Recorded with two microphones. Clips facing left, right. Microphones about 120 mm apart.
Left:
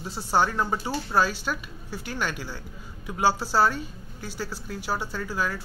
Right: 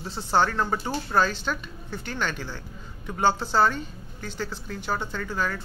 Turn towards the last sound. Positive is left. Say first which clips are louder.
# even
turn(degrees=5)  # may be behind; listen again after turning